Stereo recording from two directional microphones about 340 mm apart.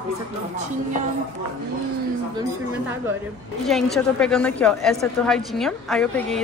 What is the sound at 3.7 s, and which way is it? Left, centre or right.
A woman's voice, centre.